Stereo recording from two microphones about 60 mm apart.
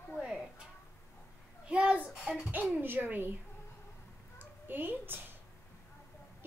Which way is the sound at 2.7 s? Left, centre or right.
Right.